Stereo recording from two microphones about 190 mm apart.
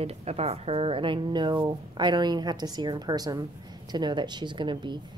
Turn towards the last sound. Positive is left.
turn(degrees=-25)  # may be behind; listen again after turning